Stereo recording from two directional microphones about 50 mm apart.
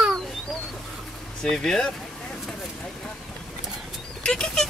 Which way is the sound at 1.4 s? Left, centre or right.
Centre.